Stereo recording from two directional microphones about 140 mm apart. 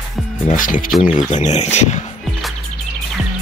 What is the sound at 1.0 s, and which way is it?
Speech, 60° left (ahead or behind).